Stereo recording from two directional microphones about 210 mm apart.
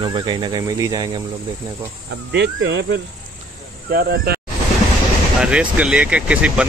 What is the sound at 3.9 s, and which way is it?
Speech, 45° right (ahead or behind).